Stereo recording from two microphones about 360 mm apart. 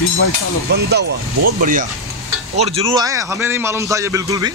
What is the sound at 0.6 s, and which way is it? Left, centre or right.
A man's voice, right.